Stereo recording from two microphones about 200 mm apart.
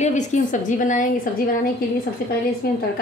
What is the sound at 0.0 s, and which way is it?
A woman's voice, 35° left (ahead or behind).